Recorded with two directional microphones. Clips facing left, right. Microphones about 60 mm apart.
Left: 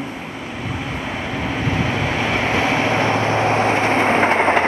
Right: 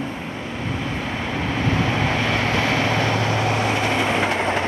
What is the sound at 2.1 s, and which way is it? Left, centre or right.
Vehicle, left.